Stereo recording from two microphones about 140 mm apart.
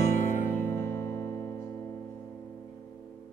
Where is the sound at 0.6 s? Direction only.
15° left (ahead or behind).